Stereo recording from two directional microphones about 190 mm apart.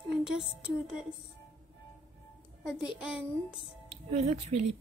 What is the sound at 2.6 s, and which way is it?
Speech, 5° right (ahead or behind).